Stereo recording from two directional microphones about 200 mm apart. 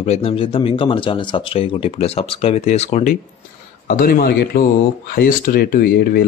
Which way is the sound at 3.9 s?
45° left (ahead or behind).